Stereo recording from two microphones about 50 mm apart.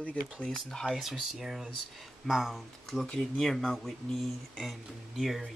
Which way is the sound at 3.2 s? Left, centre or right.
Centre.